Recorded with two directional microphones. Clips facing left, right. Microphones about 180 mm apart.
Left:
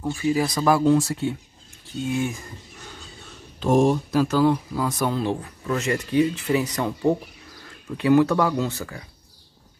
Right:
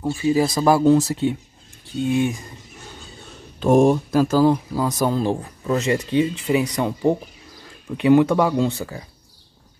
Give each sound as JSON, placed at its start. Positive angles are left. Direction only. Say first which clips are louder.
{"t": 0.0, "sound": "speech", "louder": "right 4 dB", "side_deg": -20}
{"t": 3.5, "sound": "speech", "louder": "right 4 dB", "side_deg": -55}
{"t": 4.3, "sound": "speech", "louder": "right 3 dB", "side_deg": -30}